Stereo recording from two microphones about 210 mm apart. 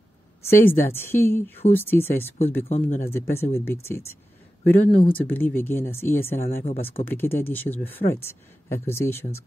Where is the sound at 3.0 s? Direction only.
10° left (ahead or behind).